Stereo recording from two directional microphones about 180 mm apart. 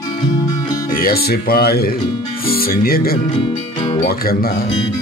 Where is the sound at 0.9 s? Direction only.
55° left (ahead or behind).